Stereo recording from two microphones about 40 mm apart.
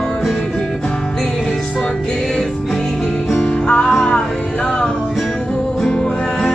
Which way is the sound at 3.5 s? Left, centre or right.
Left.